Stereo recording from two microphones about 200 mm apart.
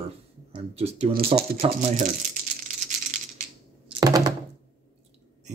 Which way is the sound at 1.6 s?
40° right (ahead or behind).